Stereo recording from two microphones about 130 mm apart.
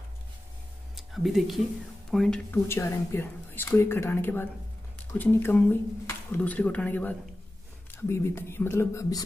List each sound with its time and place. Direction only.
0.9 s speech: centre (ahead or behind)
2.5 s speech: 20° left (ahead or behind)